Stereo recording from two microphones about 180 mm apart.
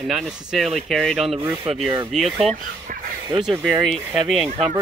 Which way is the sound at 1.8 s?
25° right (ahead or behind).